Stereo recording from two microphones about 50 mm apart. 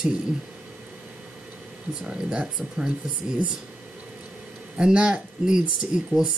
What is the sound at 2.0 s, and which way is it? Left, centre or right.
Speech, centre.